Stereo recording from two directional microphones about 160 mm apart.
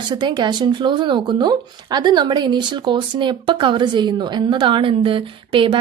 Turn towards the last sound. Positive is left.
turn(degrees=-30)  # may be behind; listen again after turning